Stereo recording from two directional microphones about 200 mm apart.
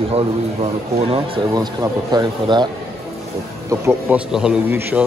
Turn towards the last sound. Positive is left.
turn(degrees=-10)  # may be behind; listen again after turning